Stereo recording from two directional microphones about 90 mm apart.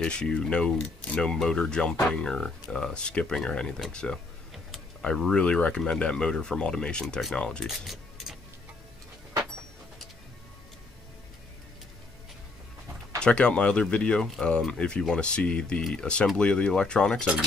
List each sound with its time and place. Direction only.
0.0 s speech: 10° left (ahead or behind)
7.6 s music: centre (ahead or behind)
13.2 s speech: 10° left (ahead or behind)